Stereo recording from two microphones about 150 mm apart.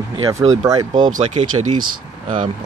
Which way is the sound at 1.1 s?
45° right (ahead or behind).